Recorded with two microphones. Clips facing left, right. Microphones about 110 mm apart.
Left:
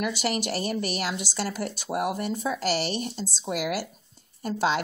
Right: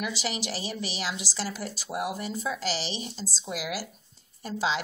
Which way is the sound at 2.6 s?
55° left (ahead or behind).